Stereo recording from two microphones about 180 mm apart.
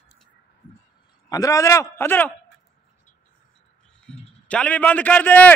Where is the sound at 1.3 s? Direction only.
20° left (ahead or behind).